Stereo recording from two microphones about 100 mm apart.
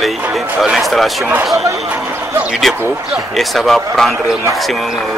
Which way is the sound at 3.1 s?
Centre (ahead or behind).